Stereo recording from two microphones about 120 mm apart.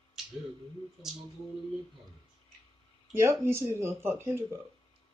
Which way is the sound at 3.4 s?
20° right (ahead or behind).